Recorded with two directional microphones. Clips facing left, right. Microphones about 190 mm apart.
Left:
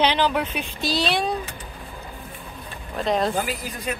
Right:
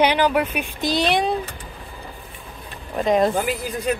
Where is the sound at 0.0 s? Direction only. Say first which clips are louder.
Right 3 dB; 10° right (ahead or behind).